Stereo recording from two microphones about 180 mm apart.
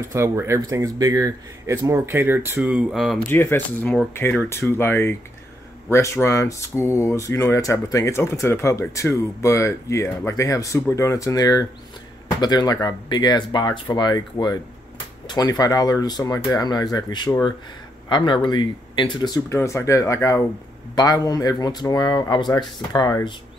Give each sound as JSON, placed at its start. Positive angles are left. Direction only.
{"t": 0.0, "sound": "speech", "side_deg": -15}